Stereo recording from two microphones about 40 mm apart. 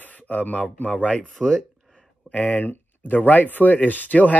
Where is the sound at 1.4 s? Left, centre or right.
Centre.